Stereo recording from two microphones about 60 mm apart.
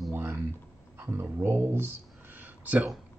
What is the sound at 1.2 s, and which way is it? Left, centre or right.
Speech, right.